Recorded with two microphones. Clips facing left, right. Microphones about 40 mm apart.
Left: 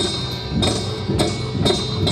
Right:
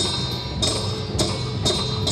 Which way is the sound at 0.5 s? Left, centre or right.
Left.